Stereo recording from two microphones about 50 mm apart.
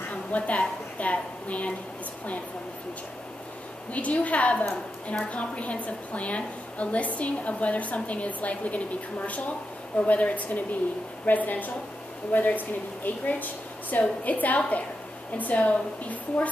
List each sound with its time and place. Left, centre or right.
0.1 s a woman's voice: left
3.9 s a woman's voice: left